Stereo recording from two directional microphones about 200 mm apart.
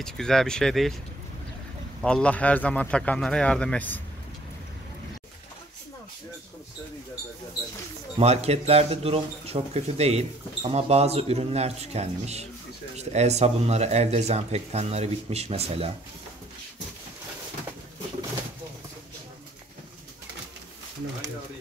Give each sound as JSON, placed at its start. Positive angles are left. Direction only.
{"t": 0.0, "sound": "a man's voice", "side_deg": 0}
{"t": 2.0, "sound": "a man's voice", "side_deg": 5}
{"t": 8.2, "sound": "speech", "side_deg": -30}